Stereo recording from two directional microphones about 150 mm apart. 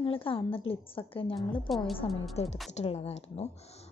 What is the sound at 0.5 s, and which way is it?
Speech, 40° left (ahead or behind).